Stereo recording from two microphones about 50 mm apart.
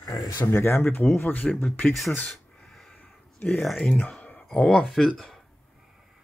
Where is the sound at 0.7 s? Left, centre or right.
Left.